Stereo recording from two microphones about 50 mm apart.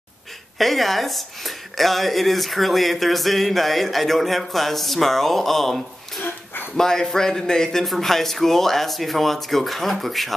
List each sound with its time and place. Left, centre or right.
0.6 s speech: centre
6.2 s a sound: left
6.8 s a man's voice: centre